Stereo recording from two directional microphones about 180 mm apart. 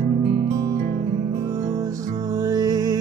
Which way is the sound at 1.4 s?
20° right (ahead or behind).